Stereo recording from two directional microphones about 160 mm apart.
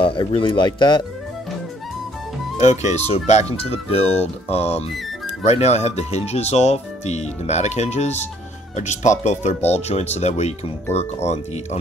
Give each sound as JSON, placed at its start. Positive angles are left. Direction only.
{"t": 0.0, "sound": "speech", "side_deg": 35}
{"t": 2.6, "sound": "speech", "side_deg": 45}